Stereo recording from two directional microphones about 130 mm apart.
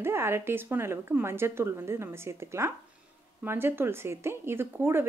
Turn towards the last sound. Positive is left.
turn(degrees=-15)  # may be behind; listen again after turning